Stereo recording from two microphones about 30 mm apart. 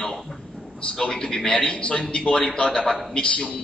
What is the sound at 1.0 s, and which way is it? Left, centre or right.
Speech, left.